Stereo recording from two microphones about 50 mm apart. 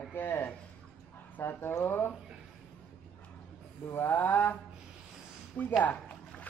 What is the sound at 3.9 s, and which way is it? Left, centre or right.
Mantra, left.